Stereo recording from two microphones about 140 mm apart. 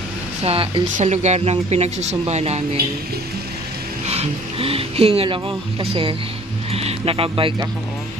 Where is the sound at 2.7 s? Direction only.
90° right.